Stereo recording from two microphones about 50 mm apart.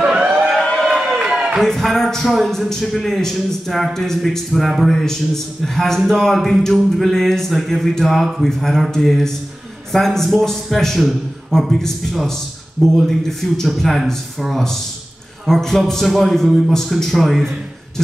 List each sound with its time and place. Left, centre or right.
0.0 s a sound: centre
0.7 s run: centre
1.6 s a man's voice: centre